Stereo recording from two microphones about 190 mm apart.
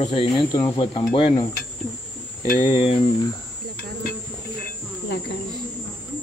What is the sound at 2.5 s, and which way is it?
Speech, 30° left (ahead or behind).